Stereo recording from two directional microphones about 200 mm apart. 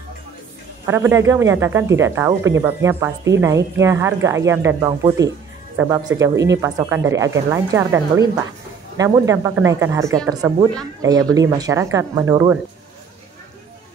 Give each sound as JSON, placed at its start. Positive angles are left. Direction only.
{"t": 0.8, "sound": "speech", "side_deg": -15}